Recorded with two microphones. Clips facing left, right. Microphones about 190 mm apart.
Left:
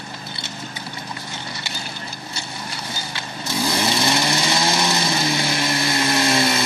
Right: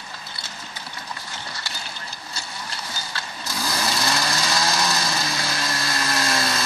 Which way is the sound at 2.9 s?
25° left (ahead or behind).